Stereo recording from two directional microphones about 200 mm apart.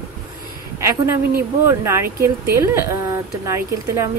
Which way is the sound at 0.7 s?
15° right (ahead or behind).